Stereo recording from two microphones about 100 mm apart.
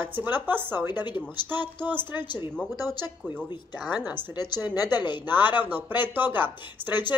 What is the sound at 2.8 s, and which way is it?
Speech, 40° left (ahead or behind).